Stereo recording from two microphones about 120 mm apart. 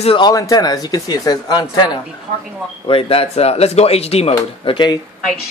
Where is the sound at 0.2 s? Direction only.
30° left (ahead or behind).